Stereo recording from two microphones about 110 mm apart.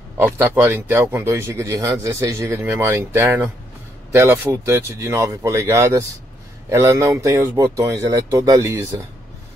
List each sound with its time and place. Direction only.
0.2 s speech: 20° right (ahead or behind)